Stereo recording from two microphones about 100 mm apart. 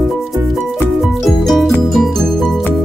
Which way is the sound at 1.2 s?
Centre (ahead or behind).